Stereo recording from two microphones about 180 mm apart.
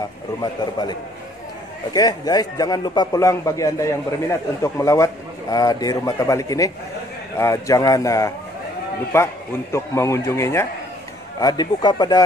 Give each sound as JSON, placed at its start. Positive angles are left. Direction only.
{"t": 2.0, "sound": "a man's voice", "side_deg": 20}